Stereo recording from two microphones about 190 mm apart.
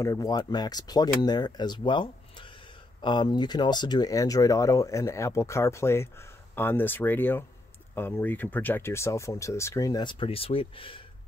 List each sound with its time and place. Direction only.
0.0 s speech: 15° left (ahead or behind)